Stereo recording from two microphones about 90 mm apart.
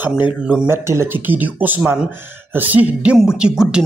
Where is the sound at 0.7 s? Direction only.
30° right (ahead or behind).